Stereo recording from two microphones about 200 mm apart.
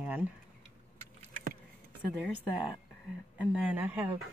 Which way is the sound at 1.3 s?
40° right (ahead or behind).